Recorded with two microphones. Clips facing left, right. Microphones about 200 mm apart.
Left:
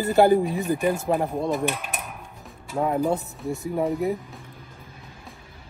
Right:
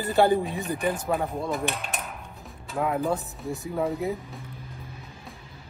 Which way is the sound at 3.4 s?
Centre (ahead or behind).